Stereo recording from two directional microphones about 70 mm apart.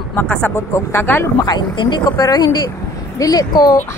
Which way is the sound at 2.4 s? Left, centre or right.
Left.